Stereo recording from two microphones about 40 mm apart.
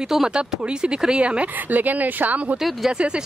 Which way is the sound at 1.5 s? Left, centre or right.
Right.